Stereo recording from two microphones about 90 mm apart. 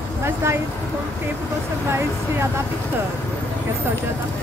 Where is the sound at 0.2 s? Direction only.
30° right (ahead or behind).